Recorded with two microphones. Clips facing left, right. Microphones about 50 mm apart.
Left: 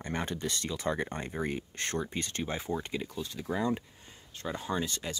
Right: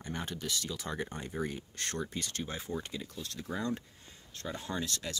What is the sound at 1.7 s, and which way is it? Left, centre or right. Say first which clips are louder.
Speech: left 4 dB; left.